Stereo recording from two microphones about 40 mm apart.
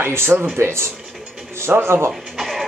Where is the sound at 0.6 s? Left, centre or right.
Right.